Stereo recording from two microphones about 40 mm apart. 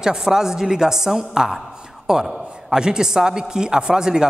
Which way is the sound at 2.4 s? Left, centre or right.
Right.